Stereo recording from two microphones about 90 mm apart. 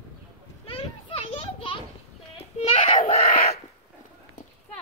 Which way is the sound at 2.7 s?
90° left.